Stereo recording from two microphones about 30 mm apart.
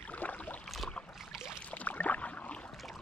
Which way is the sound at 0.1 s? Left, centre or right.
Left.